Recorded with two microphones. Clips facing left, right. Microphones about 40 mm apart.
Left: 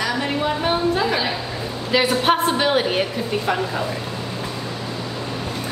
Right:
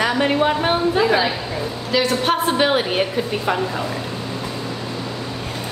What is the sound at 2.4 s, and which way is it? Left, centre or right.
A woman's voice, centre.